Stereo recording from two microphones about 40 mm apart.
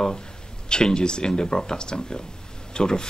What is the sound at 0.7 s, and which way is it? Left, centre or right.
Speech, centre.